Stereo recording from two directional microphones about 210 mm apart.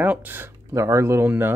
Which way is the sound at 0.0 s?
10° right (ahead or behind).